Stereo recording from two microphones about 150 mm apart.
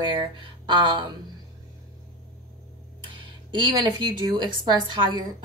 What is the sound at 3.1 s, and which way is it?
Speech, 30° right (ahead or behind).